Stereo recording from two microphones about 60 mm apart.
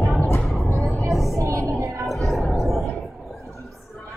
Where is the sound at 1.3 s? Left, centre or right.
Right.